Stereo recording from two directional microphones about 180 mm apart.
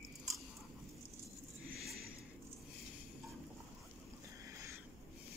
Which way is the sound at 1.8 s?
Centre (ahead or behind).